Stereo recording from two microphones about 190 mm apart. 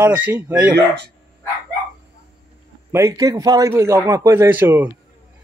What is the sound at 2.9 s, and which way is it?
A man's voice, 15° right (ahead or behind).